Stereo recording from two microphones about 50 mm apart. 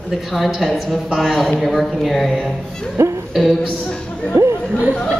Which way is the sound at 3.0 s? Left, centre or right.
Right.